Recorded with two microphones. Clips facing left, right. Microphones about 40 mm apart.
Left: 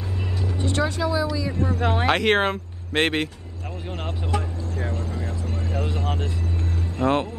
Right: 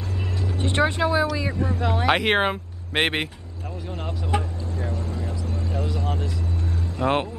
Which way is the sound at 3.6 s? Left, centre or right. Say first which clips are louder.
Left 1 dB; left.